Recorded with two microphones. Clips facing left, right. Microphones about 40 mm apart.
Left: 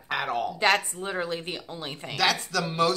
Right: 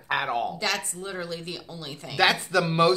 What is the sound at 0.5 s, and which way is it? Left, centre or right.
A woman's voice, left.